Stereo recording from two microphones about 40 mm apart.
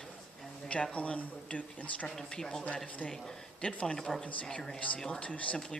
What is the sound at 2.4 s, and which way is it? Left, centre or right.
Speech, centre.